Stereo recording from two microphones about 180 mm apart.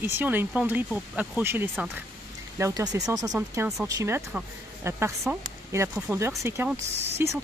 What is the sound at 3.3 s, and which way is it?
Speech, 5° right (ahead or behind).